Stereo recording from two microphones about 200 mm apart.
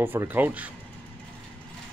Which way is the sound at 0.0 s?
10° right (ahead or behind).